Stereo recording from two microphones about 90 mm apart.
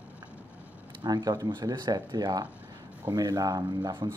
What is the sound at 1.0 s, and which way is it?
Speech, 50° right (ahead or behind).